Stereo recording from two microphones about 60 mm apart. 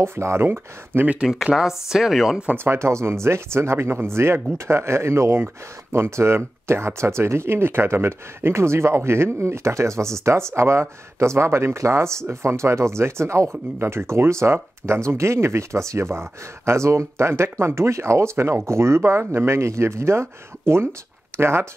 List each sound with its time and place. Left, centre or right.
0.0 s speech: right
1.4 s speech: centre
2.5 s speech: right